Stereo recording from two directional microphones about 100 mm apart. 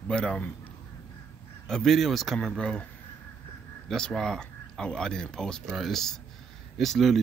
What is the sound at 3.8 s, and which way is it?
Speech, 5° left (ahead or behind).